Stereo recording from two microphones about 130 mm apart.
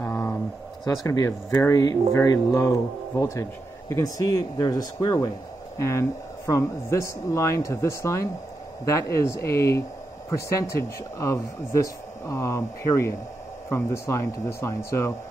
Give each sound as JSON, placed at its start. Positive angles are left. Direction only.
{"t": 0.0, "sound": "a sound", "side_deg": 20}
{"t": 1.0, "sound": "speech", "side_deg": 30}
{"t": 4.6, "sound": "speech", "side_deg": 35}
{"t": 5.8, "sound": "speech", "side_deg": 20}